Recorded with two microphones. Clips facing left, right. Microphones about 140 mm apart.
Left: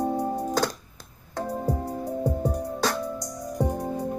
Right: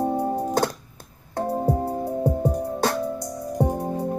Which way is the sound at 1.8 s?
60° right (ahead or behind).